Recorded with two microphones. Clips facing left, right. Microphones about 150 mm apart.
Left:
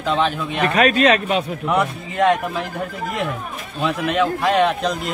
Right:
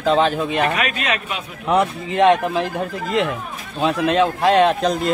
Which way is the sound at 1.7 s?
25° right (ahead or behind).